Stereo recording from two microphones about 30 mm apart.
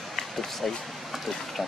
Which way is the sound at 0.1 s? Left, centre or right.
Centre.